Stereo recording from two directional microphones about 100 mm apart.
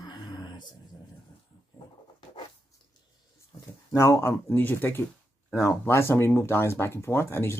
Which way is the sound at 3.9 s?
30° left (ahead or behind).